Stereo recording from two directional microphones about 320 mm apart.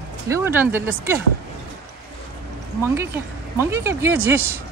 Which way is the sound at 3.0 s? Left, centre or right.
Centre.